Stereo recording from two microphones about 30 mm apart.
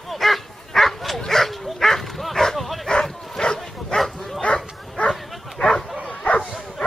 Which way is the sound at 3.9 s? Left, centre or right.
Centre.